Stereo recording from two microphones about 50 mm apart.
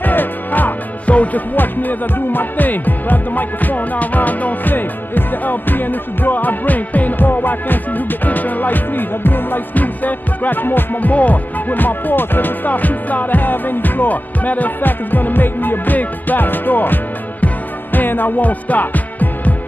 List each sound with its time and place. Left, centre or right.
0.0 s music: left